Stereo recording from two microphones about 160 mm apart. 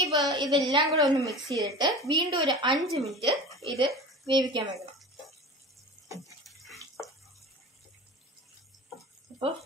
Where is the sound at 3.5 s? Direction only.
Centre (ahead or behind).